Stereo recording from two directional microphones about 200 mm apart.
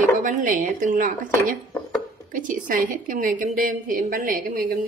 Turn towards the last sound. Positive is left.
turn(degrees=-45)  # may be behind; listen again after turning